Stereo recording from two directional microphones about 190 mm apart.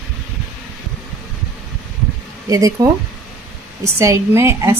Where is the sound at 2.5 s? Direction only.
20° right (ahead or behind).